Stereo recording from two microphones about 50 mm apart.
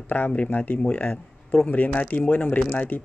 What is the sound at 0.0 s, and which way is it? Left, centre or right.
A man's voice, left.